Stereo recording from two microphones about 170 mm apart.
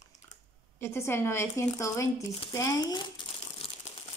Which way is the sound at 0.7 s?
15° left (ahead or behind).